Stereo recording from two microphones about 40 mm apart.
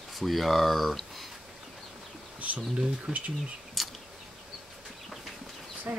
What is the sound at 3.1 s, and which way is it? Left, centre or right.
Speech, right.